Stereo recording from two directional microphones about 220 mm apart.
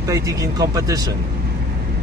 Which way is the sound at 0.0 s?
15° right (ahead or behind).